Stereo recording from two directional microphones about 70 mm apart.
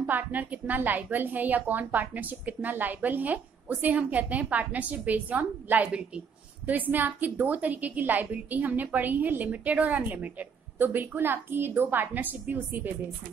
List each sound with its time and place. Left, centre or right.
0.0 s a woman's voice: right